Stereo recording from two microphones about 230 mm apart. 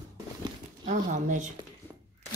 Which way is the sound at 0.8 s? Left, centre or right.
Right.